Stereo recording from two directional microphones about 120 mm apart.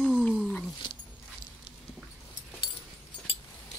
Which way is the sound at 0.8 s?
40° left (ahead or behind).